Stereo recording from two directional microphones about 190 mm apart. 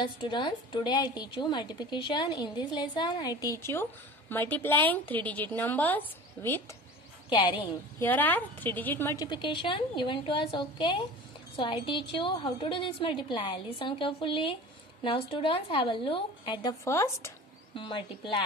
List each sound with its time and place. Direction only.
0.0 s a woman's voice: 25° left (ahead or behind)
7.2 s a woman's voice: 25° left (ahead or behind)
8.0 s a woman's voice: 10° left (ahead or behind)
17.7 s a woman's voice: 25° left (ahead or behind)